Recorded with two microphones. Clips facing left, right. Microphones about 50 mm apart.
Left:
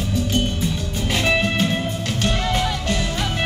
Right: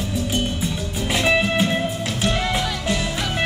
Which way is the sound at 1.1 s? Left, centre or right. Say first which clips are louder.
Right 1 dB; centre.